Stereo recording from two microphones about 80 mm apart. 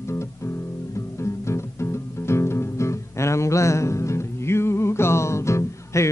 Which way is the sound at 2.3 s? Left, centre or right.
Left.